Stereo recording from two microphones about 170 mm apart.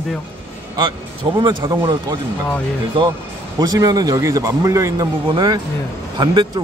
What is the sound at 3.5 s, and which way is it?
Speech, 20° right (ahead or behind).